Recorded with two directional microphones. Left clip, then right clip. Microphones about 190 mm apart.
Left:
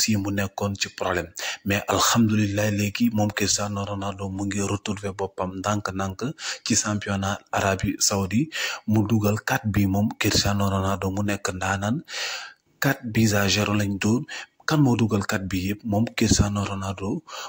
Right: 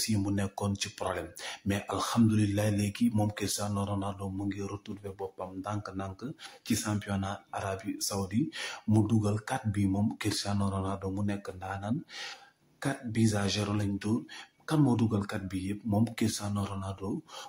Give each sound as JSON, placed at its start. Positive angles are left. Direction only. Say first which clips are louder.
{"t": 0.0, "sound": "speech", "louder": "left 8 dB", "side_deg": 25}
{"t": 2.2, "sound": "speech", "louder": "left 6 dB", "side_deg": 20}
{"t": 4.5, "sound": "speech", "louder": "left 10 dB", "side_deg": 40}